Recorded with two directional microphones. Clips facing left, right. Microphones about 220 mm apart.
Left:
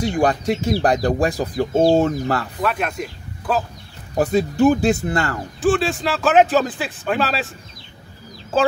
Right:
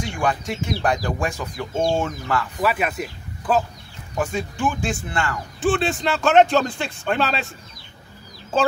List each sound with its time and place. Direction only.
0.0 s speech: 35° left (ahead or behind)
2.6 s speech: 5° right (ahead or behind)
4.1 s speech: 35° left (ahead or behind)
5.6 s speech: centre (ahead or behind)